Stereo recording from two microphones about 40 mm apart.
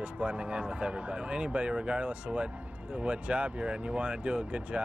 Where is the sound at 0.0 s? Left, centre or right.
Right.